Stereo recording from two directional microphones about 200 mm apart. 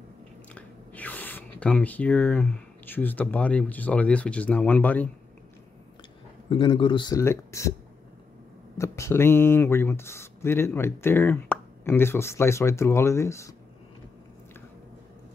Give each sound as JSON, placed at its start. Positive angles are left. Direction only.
{"t": 0.6, "sound": "speech", "side_deg": 10}
{"t": 6.5, "sound": "speech", "side_deg": 25}
{"t": 8.7, "sound": "speech", "side_deg": 15}